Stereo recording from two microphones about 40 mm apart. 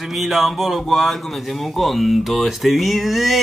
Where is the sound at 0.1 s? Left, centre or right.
Centre.